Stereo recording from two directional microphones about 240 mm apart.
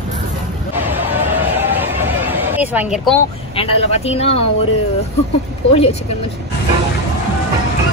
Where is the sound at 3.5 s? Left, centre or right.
Left.